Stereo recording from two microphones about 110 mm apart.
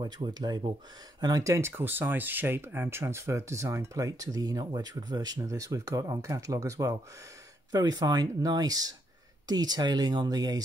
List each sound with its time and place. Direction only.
0.0 s speech: 40° right (ahead or behind)
1.7 s speech: 20° right (ahead or behind); by 10.6 s 35° right (ahead or behind)